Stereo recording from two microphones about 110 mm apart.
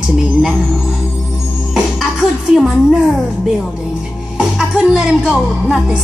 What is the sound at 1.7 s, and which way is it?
Speech, centre (ahead or behind).